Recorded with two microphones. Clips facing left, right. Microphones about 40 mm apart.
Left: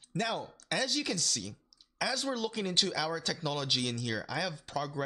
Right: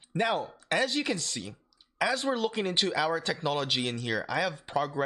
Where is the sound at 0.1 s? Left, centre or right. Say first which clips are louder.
Right 6 dB; right.